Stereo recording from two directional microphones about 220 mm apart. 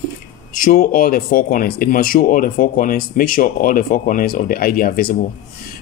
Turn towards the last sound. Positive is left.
turn(degrees=40)  # may be behind; listen again after turning